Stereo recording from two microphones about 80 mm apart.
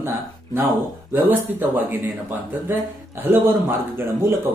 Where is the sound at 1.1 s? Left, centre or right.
Right.